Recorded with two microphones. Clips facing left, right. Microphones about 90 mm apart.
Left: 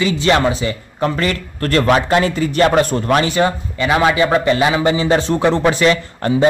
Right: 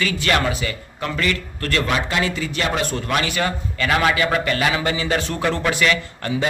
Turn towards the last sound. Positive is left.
turn(degrees=30)  # may be behind; listen again after turning